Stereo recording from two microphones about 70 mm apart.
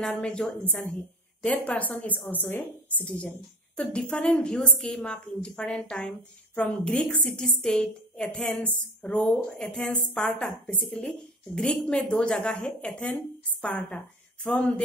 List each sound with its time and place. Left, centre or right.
0.0 s a woman's voice: centre